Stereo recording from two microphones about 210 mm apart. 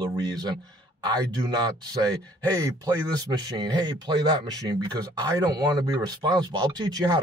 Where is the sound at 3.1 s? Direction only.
20° right (ahead or behind).